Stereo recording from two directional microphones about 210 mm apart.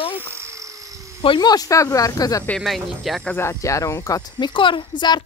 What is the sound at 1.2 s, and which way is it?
Speech, 20° left (ahead or behind).